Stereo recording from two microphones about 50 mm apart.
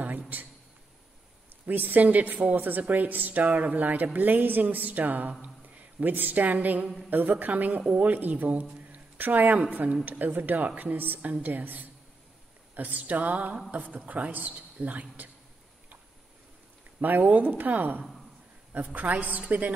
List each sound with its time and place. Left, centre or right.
1.7 s a woman's voice: right
17.0 s a woman's voice: right